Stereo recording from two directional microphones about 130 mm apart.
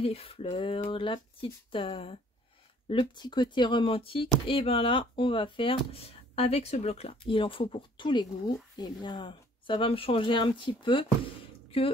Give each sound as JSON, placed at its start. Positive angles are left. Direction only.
{"t": 0.0, "sound": "speech", "side_deg": 50}